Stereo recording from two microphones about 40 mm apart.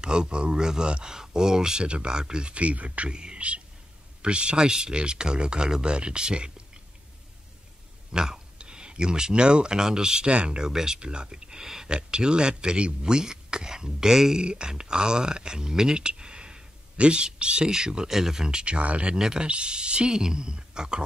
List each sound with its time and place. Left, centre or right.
0.0 s speech: right
3.1 s speech: right
8.1 s speech: centre
10.6 s speech: centre
11.9 s speech: right
14.4 s speech: right
19.1 s speech: centre
19.4 s speech: right